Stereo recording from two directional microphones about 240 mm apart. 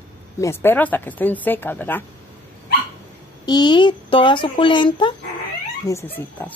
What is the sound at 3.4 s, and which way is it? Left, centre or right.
Speech, centre.